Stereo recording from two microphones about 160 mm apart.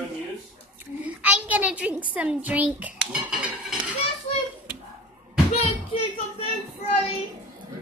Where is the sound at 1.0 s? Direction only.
10° right (ahead or behind).